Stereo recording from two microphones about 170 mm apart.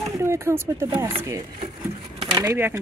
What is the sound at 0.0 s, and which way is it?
Speech, 15° right (ahead or behind).